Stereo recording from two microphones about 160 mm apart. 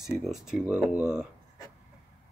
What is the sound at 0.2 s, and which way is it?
Speech, centre (ahead or behind).